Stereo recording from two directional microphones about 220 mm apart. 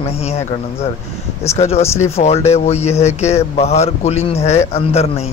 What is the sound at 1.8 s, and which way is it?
Speech, 10° left (ahead or behind).